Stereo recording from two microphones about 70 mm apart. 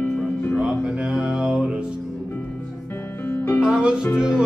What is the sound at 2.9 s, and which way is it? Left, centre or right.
Music, left.